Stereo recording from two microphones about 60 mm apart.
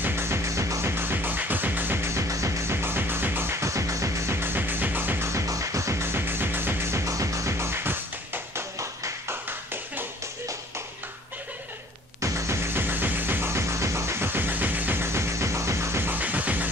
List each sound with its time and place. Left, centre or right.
0.0 s music: right
0.9 s music: right
2.0 s music: right
3.6 s music: right
4.4 s music: right
5.2 s music: right
7.2 s music: right
9.3 s a sound: right
12.2 s music: right
12.7 s music: right
13.5 s music: right
15.0 s music: right
16.1 s music: right